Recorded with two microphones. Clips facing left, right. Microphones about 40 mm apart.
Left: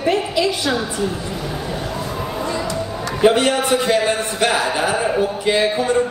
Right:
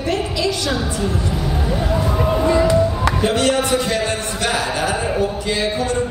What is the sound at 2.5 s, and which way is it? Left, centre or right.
Basketball bounce, right.